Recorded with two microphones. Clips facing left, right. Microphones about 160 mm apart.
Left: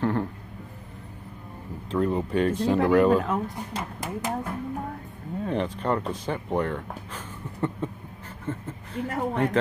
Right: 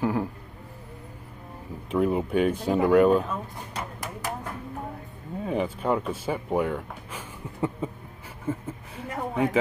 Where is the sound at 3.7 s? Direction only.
25° left (ahead or behind).